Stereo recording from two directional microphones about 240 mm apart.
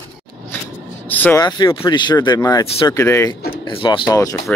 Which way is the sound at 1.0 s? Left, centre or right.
Centre.